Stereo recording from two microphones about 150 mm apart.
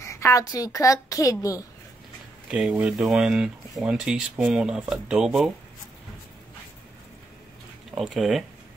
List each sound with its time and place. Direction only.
0.0 s speech: 20° left (ahead or behind)
2.5 s speech: 5° right (ahead or behind)
7.9 s speech: centre (ahead or behind)